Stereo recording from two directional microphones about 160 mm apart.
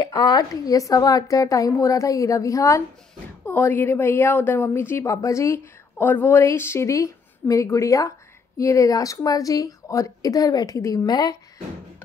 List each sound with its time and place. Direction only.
0.0 s a woman's voice: 25° left (ahead or behind)